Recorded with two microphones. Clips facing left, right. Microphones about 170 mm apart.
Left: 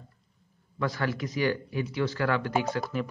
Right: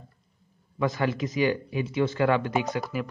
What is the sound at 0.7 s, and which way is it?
Speech, 20° right (ahead or behind).